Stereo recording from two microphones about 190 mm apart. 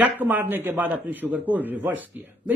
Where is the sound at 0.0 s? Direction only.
10° right (ahead or behind).